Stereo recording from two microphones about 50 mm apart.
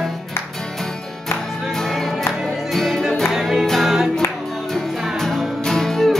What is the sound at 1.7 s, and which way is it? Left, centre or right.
Music, centre.